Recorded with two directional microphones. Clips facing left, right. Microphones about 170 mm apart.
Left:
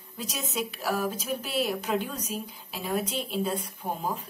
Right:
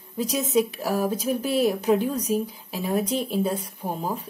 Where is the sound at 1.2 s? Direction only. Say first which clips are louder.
Right 8 dB; 40° right (ahead or behind).